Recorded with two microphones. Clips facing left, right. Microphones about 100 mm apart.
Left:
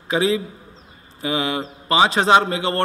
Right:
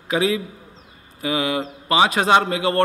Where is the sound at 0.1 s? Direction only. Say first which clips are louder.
Left 1 dB; 30° left (ahead or behind).